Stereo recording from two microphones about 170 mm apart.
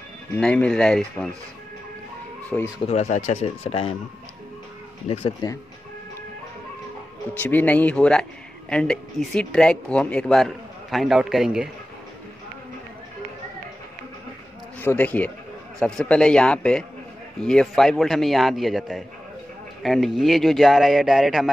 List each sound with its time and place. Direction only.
0.4 s speech: 5° left (ahead or behind)
2.5 s a man's voice: 5° left (ahead or behind)
2.9 s speech: 40° left (ahead or behind)
5.0 s speech: 35° left (ahead or behind)
7.3 s speech: 10° left (ahead or behind)
14.8 s a man's voice: 10° left (ahead or behind)